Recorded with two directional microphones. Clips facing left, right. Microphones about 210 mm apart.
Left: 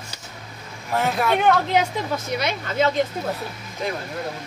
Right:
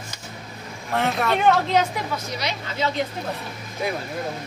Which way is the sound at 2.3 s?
55° left (ahead or behind).